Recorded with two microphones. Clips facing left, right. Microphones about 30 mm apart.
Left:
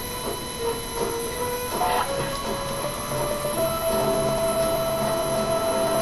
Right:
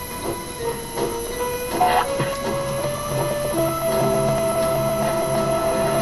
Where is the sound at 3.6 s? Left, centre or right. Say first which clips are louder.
Right 1 dB; right.